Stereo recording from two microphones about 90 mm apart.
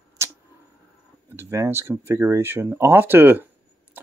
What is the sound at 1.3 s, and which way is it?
Speech, 30° right (ahead or behind).